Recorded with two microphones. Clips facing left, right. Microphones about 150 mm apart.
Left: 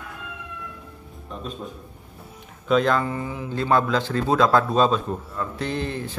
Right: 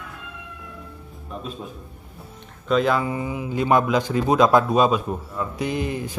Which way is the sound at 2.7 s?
5° right (ahead or behind).